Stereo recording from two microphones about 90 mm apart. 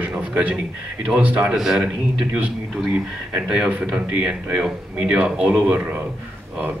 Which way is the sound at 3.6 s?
10° right (ahead or behind).